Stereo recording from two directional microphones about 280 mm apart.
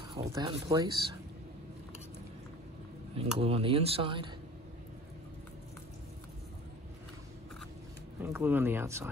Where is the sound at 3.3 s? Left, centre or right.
Right.